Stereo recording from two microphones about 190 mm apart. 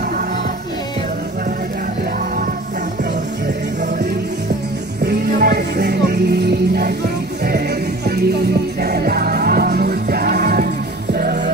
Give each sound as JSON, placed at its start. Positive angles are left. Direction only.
{"t": 5.0, "sound": "music", "side_deg": -60}